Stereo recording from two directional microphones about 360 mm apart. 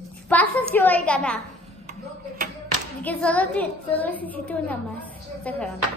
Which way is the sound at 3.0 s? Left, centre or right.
Centre.